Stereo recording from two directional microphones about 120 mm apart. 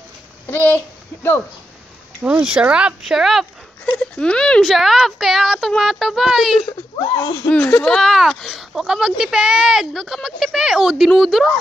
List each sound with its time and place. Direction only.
0.5 s a child's voice: 20° left (ahead or behind)
2.2 s speech: 5° right (ahead or behind)
7.0 s speech: 40° left (ahead or behind)
7.4 s speech: 10° left (ahead or behind)